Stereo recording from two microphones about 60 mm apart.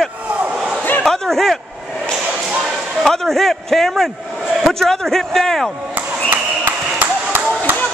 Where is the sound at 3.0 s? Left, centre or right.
Centre.